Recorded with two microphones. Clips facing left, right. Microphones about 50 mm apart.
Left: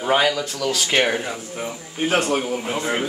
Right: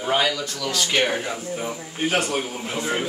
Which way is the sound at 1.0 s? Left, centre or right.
Centre.